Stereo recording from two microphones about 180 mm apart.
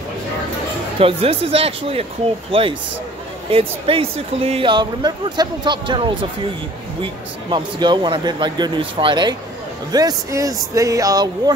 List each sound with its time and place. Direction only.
0.9 s speech: 30° right (ahead or behind)
3.5 s speech: 30° right (ahead or behind)